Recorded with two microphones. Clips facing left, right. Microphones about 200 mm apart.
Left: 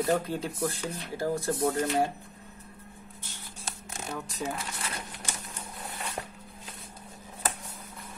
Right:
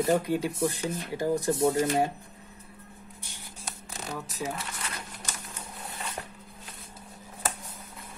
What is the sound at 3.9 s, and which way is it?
Speech, centre (ahead or behind).